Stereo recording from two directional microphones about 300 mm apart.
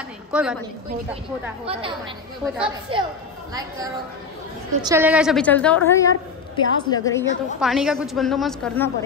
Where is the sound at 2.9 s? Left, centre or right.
Centre.